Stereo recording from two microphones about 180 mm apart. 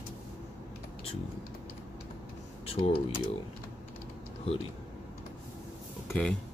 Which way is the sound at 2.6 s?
30° left (ahead or behind).